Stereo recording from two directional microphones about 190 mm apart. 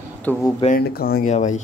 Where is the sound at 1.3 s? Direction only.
40° left (ahead or behind).